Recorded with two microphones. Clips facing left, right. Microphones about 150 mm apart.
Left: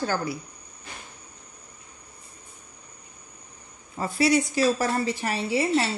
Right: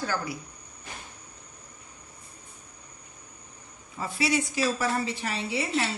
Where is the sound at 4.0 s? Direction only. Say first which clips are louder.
Left 5 dB; 40° left (ahead or behind).